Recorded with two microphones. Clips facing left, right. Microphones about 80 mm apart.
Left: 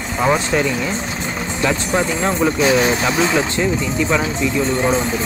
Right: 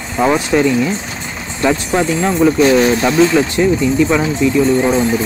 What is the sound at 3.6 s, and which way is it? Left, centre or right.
Speech, centre.